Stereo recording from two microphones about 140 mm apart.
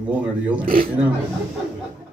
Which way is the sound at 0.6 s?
90° right.